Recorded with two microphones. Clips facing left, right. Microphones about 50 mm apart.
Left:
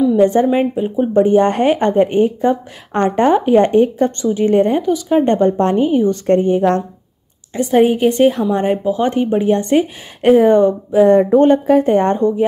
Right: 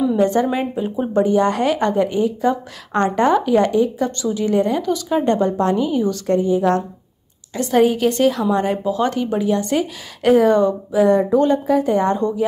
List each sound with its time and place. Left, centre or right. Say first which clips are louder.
0.2 s a woman's voice: left 5 dB; left
1.1 s speech: left 4 dB; left
4.8 s a woman's voice: left 5 dB; centre
5.2 s speech: left 4 dB; left
6.2 s speech: left 1 dB; left
7.5 s a woman's voice: left 3 dB; left